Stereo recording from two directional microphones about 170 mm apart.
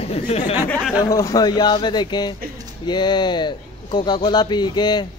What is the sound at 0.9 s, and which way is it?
Speech, 20° left (ahead or behind).